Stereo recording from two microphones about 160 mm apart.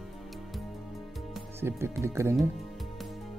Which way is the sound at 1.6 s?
15° right (ahead or behind).